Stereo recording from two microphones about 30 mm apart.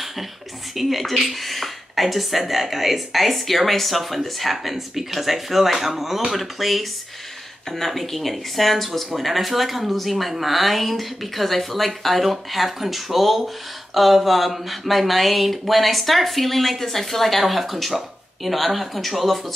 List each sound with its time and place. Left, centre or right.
0.7 s speech: centre